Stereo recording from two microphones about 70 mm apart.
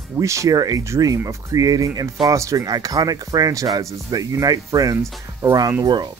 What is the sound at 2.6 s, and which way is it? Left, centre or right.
Speech, right.